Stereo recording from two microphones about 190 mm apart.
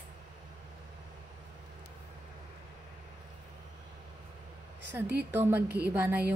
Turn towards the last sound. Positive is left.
turn(degrees=-10)  # may be behind; listen again after turning